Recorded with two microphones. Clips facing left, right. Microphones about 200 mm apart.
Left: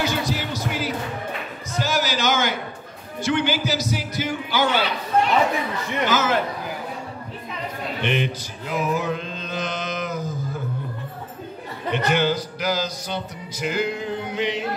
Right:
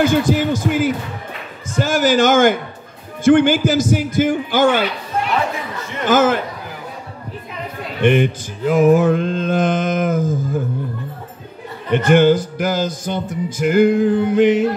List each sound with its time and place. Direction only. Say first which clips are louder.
0.0 s speech: right 10 dB; 50° right (ahead or behind)
1.8 s music: right 9 dB; 50° right (ahead or behind)
6.0 s music: right 8 dB; 50° right (ahead or behind)
8.0 s music: right 10 dB; 50° right (ahead or behind)
11.9 s music: right 9 dB; 50° right (ahead or behind)